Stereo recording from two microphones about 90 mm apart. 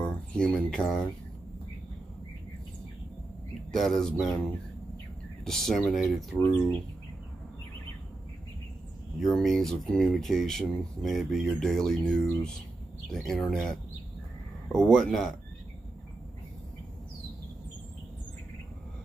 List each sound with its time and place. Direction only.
0.0 s speech: 10° left (ahead or behind)
3.7 s speech: centre (ahead or behind)
9.2 s speech: centre (ahead or behind)